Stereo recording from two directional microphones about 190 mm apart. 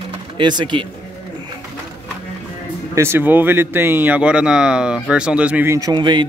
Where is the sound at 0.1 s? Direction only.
25° right (ahead or behind).